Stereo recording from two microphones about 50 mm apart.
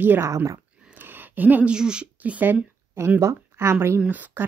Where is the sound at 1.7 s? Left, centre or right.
Centre.